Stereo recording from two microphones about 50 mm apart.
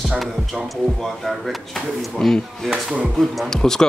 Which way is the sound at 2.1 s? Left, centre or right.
Centre.